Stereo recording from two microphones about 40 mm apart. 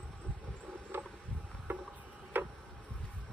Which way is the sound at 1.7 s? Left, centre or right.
Right.